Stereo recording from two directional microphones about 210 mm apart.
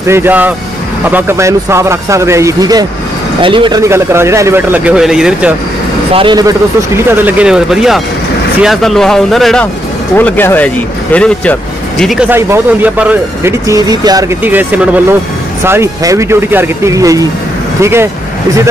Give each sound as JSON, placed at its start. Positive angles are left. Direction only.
{"t": 0.0, "sound": "speech", "side_deg": -10}
{"t": 6.1, "sound": "speech", "side_deg": -20}
{"t": 7.1, "sound": "speech", "side_deg": -5}